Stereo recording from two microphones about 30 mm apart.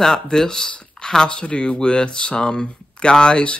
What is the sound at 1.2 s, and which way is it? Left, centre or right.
Speech, left.